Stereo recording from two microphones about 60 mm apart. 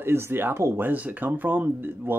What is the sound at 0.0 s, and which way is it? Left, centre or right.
Speech, right.